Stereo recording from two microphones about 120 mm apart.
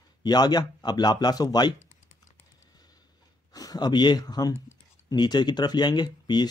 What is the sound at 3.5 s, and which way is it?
Speech, 30° left (ahead or behind).